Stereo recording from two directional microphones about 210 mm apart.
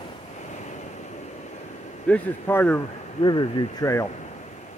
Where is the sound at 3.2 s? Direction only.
20° left (ahead or behind).